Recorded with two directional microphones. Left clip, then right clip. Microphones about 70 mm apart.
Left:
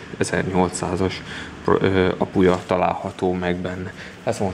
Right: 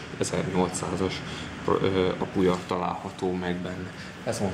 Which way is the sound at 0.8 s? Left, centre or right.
Left.